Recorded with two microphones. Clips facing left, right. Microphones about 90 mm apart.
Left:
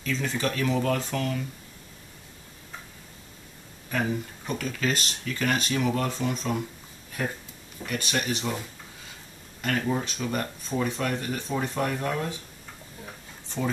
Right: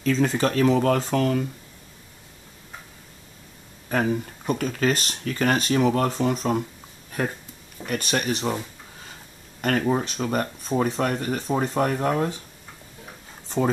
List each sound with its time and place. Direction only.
0.0 s speech: 40° right (ahead or behind)
4.0 s speech: 35° right (ahead or behind)
7.8 s speech: 45° right (ahead or behind)
9.6 s speech: 45° right (ahead or behind)